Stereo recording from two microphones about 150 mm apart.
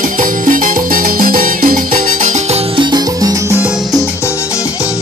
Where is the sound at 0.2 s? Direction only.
70° right (ahead or behind).